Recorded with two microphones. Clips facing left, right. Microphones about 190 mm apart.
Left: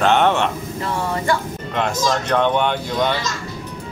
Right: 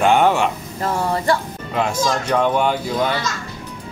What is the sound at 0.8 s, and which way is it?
Speech, 35° right (ahead or behind).